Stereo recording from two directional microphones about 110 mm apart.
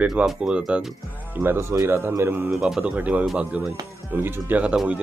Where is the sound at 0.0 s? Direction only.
5° right (ahead or behind).